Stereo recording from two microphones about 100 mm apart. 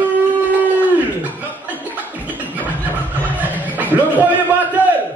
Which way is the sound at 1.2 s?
15° right (ahead or behind).